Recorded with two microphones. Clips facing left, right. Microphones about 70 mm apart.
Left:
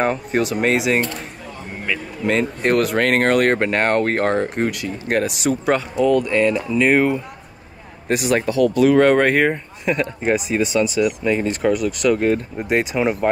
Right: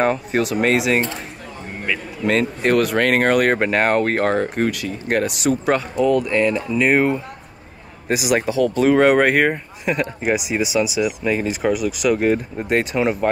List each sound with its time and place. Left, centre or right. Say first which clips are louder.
0.0 s speech: right 1 dB; centre
8.7 s speech: left 2 dB; right
9.0 s speech: even; centre
12.5 s speech: even; centre